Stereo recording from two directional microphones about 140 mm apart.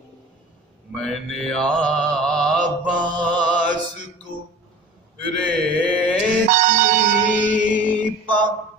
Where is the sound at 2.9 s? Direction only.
30° right (ahead or behind).